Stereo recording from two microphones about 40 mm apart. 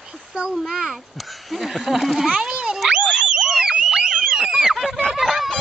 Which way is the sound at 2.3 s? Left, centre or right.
Right.